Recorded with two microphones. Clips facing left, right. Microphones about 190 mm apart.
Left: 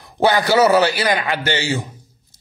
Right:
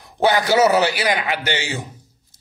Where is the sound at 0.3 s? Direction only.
15° right (ahead or behind).